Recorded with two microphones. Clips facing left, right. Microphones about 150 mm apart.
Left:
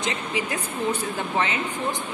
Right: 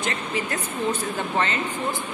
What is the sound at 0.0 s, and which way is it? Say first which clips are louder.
Speech: even; 15° left (ahead or behind).